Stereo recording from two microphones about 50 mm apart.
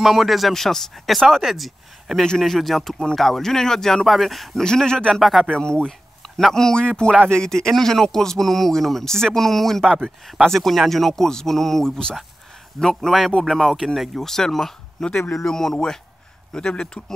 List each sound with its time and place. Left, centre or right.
0.0 s speech: centre
2.2 s speech: centre
4.6 s speech: centre